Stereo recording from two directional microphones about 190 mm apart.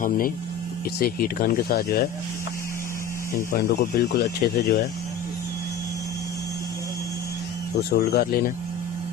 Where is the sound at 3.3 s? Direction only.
50° left (ahead or behind).